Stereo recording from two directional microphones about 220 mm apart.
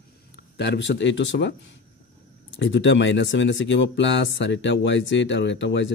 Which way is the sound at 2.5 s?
55° left (ahead or behind).